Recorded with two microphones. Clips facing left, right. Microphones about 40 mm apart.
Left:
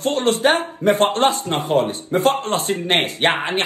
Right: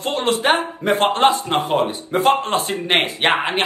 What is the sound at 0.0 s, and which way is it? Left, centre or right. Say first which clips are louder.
Speech: left 2 dB; right.